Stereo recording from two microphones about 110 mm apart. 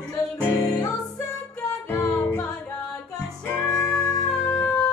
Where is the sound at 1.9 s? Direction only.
15° left (ahead or behind).